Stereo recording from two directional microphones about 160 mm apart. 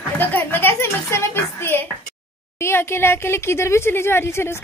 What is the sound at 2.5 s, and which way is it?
Speech, 15° left (ahead or behind).